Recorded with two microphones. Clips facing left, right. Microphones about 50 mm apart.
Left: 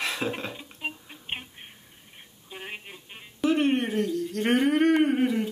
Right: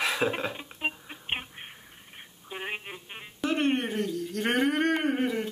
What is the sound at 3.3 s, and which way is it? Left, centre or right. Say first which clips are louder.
Humming: left 3 dB; centre.